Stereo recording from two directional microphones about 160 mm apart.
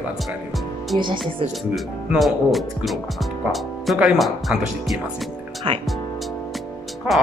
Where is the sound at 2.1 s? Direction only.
Centre (ahead or behind).